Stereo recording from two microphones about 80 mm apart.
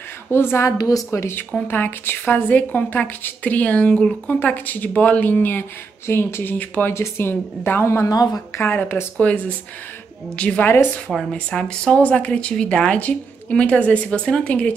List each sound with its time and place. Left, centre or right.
0.3 s a woman's voice: left
0.7 s a woman's voice: left
6.6 s a woman's voice: centre
6.9 s a woman's voice: left
8.1 s speech: left
8.5 s a woman's voice: left